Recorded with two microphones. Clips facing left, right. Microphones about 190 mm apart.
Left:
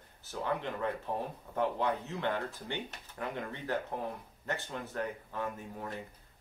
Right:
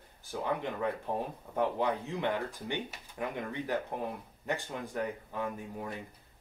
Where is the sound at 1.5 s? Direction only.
15° right (ahead or behind).